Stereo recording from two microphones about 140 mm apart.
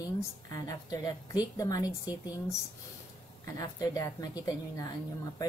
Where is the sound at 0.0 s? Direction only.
25° left (ahead or behind).